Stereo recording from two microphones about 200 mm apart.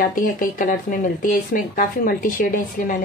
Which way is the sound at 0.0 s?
40° left (ahead or behind).